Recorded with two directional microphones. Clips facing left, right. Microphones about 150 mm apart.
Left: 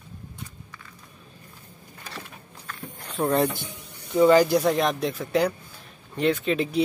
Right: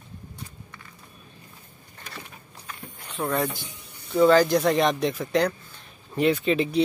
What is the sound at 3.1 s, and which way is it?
Speech, 35° left (ahead or behind).